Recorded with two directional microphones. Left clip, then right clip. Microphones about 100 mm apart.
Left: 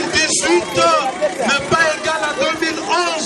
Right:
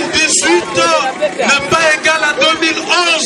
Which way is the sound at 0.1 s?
Centre (ahead or behind).